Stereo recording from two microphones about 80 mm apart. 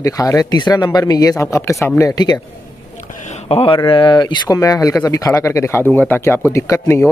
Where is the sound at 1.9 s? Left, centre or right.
Left.